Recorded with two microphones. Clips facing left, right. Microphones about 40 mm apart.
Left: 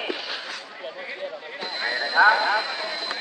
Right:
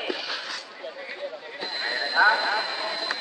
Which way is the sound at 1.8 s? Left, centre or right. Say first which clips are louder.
Left 3 dB; left.